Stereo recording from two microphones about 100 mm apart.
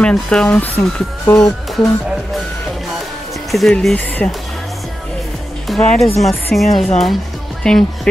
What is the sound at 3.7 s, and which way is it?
Speech, 10° left (ahead or behind).